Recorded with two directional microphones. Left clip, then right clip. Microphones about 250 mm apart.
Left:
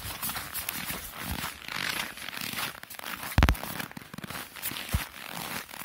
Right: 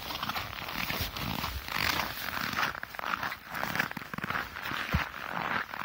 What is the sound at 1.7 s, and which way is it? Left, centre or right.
Zipper, right.